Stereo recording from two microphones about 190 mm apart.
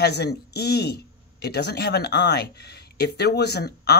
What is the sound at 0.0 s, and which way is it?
A man's voice, 60° left (ahead or behind).